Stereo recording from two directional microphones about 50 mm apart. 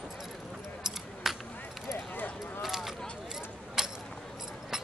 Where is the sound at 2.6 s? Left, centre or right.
Centre.